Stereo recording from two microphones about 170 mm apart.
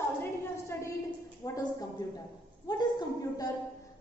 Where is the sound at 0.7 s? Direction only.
10° left (ahead or behind).